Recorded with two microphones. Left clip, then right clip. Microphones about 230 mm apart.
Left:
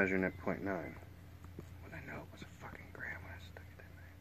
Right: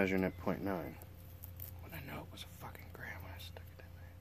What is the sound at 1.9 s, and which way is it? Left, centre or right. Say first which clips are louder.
Whispering: even; right.